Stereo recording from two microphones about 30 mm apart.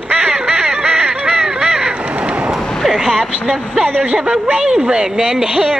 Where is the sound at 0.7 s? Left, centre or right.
Right.